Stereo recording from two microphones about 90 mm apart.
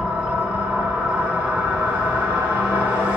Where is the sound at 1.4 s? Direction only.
20° right (ahead or behind).